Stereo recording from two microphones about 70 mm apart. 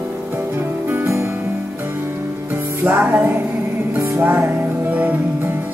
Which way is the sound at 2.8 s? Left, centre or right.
Right.